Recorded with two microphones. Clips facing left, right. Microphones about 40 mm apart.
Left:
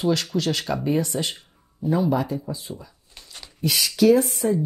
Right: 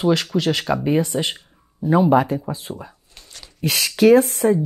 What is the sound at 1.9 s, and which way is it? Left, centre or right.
Speech, right.